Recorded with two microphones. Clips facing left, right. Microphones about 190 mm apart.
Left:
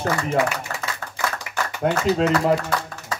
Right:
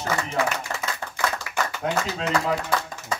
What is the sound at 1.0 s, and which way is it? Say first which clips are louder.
Clapping: right 1 dB; 15° right (ahead or behind).